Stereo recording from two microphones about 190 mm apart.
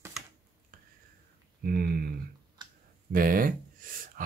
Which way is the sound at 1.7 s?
50° right (ahead or behind).